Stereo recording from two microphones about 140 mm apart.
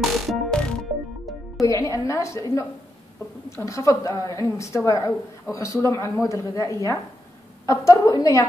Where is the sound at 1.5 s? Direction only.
25° left (ahead or behind).